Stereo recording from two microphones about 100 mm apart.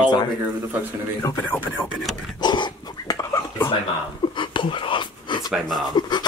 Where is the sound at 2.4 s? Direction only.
45° left (ahead or behind).